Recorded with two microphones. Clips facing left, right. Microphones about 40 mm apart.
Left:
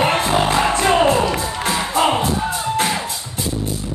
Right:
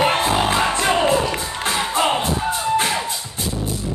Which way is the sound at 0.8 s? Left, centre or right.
Centre.